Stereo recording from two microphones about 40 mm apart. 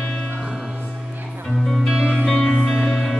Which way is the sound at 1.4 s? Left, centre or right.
Centre.